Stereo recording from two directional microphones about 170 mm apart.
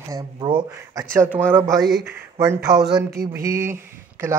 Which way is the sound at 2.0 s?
15° right (ahead or behind).